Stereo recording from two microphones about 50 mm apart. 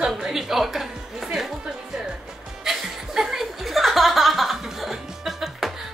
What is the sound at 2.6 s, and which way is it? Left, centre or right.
Chuckle, centre.